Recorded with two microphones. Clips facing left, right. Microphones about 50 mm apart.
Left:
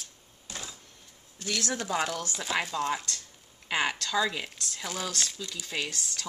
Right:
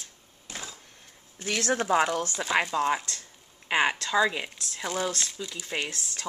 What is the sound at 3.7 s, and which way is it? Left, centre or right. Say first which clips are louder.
Speech: right 4 dB; right.